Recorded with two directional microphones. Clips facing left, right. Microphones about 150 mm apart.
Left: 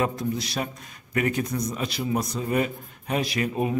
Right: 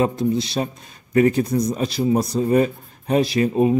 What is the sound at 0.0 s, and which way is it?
A man's voice, 25° right (ahead or behind).